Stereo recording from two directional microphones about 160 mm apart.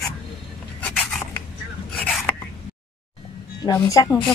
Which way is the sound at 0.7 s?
10° left (ahead or behind).